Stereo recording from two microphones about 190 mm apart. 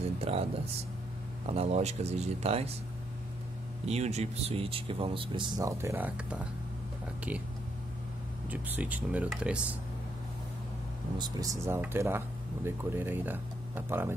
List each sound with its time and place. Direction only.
0.2 s speech: 30° right (ahead or behind)
1.5 s speech: 35° right (ahead or behind)
3.8 s speech: 35° right (ahead or behind); by 6.4 s 10° right (ahead or behind)
8.5 s speech: 10° right (ahead or behind)
11.1 s speech: 20° right (ahead or behind)